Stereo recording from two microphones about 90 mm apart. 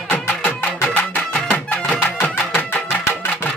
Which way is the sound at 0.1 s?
20° left (ahead or behind).